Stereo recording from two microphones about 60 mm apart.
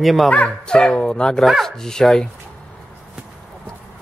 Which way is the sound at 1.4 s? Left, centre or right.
Centre.